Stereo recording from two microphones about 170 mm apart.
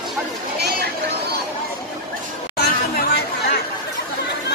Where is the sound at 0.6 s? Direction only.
70° right (ahead or behind).